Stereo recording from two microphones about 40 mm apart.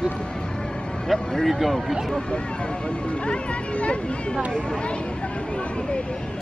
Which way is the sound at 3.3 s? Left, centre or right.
Left.